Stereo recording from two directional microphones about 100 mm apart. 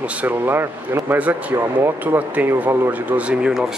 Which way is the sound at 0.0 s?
15° right (ahead or behind).